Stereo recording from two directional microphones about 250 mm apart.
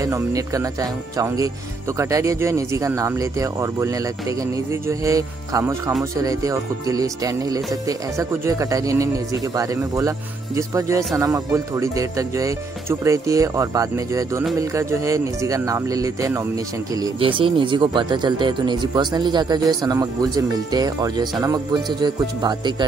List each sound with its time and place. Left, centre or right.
0.0 s speech: centre